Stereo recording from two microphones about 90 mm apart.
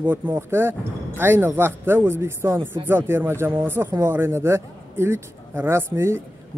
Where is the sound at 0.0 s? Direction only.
20° right (ahead or behind).